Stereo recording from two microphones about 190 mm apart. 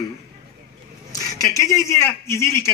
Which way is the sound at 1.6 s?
15° left (ahead or behind).